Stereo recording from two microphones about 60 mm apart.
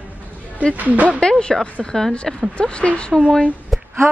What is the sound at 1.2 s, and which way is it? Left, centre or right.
Speech, centre.